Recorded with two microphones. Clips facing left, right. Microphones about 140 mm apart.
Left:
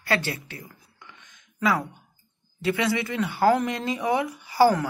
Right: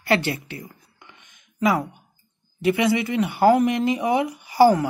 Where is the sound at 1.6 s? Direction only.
20° right (ahead or behind).